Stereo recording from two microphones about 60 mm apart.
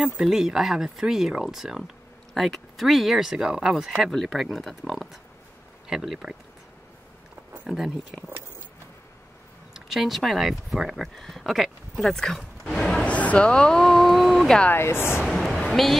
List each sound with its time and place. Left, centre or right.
0.0 s speech: centre
4.1 s speech: centre
5.9 s speech: centre
7.6 s speech: centre
9.8 s speech: centre
12.6 s a sound: centre
13.0 s speech: left; by 14.6 s centre
14.7 s speech: left
15.2 s a woman's voice: centre